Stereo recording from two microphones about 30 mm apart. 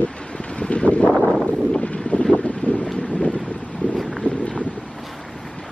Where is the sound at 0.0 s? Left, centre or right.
Left.